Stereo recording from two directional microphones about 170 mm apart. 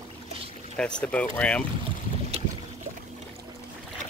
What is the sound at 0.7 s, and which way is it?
Speech, 5° left (ahead or behind).